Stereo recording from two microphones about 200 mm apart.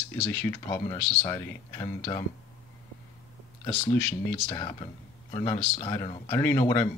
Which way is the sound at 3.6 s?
15° left (ahead or behind).